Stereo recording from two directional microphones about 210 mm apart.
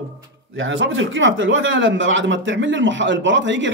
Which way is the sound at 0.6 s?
65° right (ahead or behind).